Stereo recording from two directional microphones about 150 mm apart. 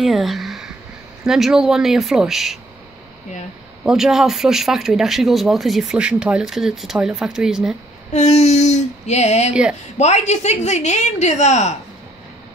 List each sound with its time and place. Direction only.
0.0 s speech: centre (ahead or behind)
3.8 s speech: 5° right (ahead or behind)
8.1 s a woman's voice: 50° left (ahead or behind)
9.5 s a woman's voice: 5° right (ahead or behind)
9.9 s a woman's voice: 50° left (ahead or behind)